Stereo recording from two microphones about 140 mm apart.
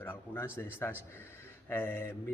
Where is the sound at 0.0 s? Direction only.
15° left (ahead or behind).